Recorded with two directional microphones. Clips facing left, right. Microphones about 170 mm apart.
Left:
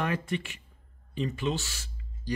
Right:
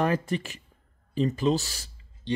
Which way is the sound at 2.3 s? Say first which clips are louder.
Right 4 dB; 25° right (ahead or behind).